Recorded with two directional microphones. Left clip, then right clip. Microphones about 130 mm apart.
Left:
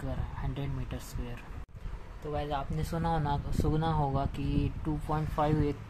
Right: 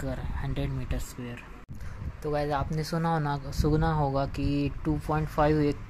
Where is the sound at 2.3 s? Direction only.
55° right (ahead or behind).